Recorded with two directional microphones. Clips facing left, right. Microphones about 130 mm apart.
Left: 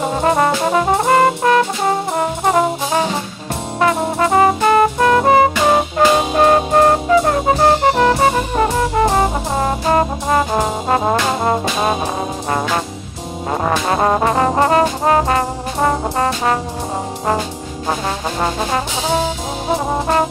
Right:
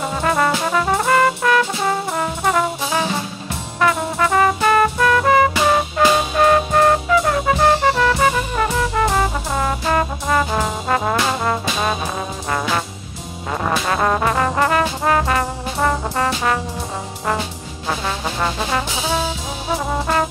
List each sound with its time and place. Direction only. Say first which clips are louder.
0.0 s brass instrument: left 4 dB; 30° left (ahead or behind)
13.5 s trombone: left 3 dB; 35° left (ahead or behind)
18.0 s trombone: left 1 dB; 40° left (ahead or behind)